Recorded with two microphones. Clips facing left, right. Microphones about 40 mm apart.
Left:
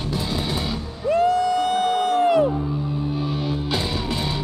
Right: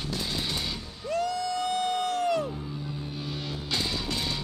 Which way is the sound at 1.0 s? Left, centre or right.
Left.